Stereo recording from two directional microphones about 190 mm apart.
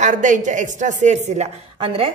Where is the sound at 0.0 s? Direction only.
40° right (ahead or behind).